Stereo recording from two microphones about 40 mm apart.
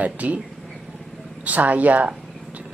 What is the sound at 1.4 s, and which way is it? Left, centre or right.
Speech, right.